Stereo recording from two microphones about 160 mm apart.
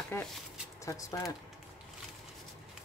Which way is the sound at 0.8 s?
20° left (ahead or behind).